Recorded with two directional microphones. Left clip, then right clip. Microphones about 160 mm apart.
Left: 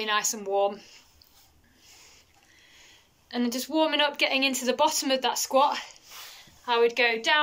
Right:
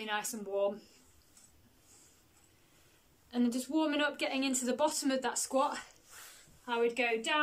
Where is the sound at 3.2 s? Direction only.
5° right (ahead or behind).